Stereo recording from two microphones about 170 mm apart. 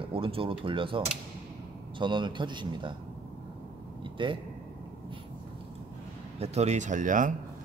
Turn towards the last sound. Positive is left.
turn(degrees=-50)  # may be behind; listen again after turning